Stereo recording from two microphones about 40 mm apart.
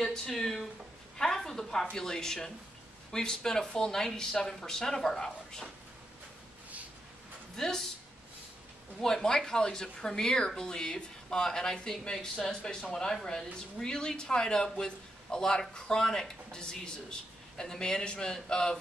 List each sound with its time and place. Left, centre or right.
0.0 s speech: centre
1.1 s a sound: centre
2.0 s speech: centre
7.5 s speech: centre
9.0 s speech: centre